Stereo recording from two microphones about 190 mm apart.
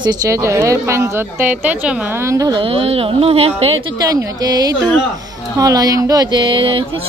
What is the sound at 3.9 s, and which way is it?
Speech, 20° right (ahead or behind).